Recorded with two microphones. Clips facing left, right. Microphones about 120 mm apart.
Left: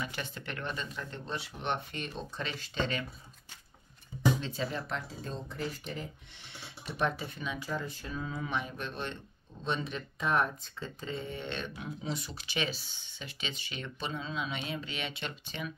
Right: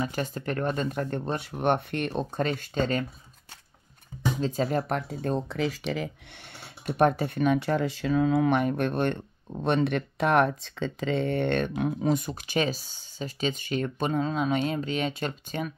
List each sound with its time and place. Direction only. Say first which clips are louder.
0.0 s speech: right 9 dB; 40° right (ahead or behind)
4.4 s speech: right 9 dB; 45° right (ahead or behind); by 6.0 s 90° right
6.5 s speech: right 9 dB; 50° right (ahead or behind)